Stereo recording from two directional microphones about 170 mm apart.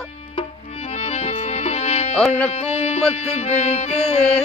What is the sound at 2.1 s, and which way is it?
Music, 5° left (ahead or behind).